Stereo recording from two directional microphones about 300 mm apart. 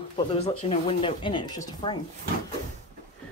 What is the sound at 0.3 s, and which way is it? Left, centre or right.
Speech, centre.